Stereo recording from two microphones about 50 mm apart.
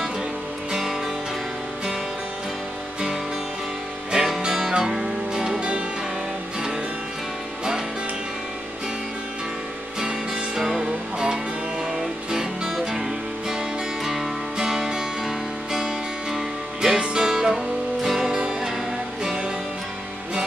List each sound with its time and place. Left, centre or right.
0.7 s music: centre
4.1 s music: centre
9.9 s music: centre